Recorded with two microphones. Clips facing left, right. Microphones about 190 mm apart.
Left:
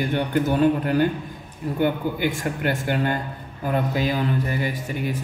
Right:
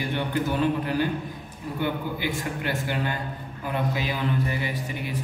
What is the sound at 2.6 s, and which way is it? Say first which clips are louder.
Speech: left 6 dB; 50° left (ahead or behind).